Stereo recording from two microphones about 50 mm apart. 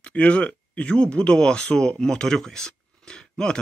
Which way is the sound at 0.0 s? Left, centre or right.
Left.